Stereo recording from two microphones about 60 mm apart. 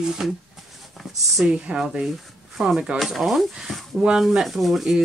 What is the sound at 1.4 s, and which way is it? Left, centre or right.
Speech, centre.